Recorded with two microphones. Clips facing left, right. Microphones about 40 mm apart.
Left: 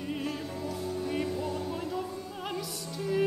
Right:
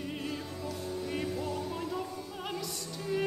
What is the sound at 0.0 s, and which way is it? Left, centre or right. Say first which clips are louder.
Music: left 3 dB; centre.